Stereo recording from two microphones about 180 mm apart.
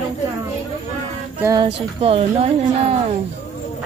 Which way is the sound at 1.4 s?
20° right (ahead or behind).